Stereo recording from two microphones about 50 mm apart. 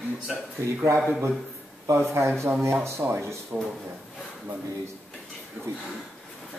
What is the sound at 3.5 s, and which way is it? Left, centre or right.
Speech, right.